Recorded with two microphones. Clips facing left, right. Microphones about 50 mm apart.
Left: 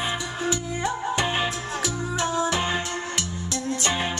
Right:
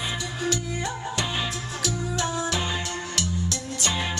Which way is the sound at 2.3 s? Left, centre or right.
Left.